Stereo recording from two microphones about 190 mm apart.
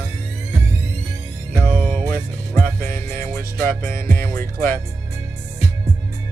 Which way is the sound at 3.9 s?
50° right (ahead or behind).